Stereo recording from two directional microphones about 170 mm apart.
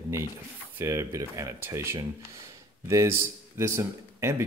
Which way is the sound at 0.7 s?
15° right (ahead or behind).